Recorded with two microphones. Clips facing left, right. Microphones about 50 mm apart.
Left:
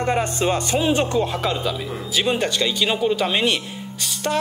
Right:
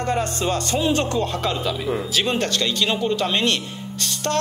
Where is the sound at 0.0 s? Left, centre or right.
Left.